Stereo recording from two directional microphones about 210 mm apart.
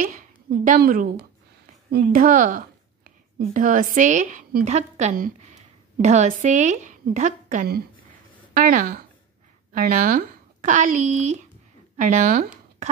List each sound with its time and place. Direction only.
0.0 s a woman's voice: 40° right (ahead or behind)